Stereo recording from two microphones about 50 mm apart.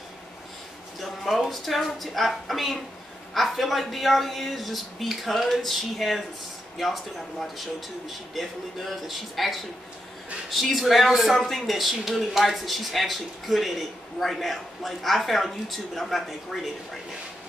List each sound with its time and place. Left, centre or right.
0.9 s speech: centre